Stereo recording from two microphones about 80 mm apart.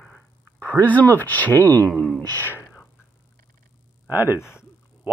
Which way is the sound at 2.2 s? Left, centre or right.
Left.